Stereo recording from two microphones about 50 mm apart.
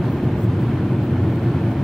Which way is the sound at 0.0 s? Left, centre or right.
Centre.